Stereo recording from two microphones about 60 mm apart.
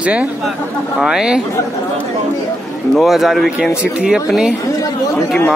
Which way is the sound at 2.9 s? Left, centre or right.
Centre.